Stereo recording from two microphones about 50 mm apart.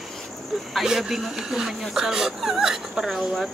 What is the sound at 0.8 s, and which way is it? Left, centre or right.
Speech, centre.